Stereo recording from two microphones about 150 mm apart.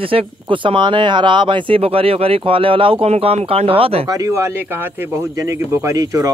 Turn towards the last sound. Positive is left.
turn(degrees=-20)  # may be behind; listen again after turning